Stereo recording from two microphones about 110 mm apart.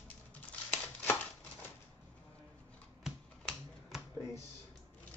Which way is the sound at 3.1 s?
5° right (ahead or behind).